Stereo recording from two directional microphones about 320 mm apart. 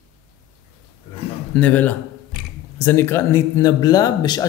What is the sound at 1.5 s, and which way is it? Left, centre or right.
Speech, centre.